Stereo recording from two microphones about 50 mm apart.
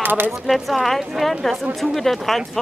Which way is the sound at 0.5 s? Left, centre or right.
Centre.